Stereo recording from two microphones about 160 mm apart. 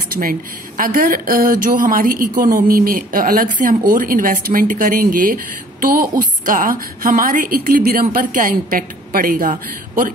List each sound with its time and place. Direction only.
0.1 s speech: 60° right (ahead or behind)